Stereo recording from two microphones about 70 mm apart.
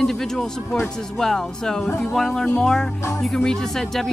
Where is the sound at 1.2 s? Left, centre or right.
Centre.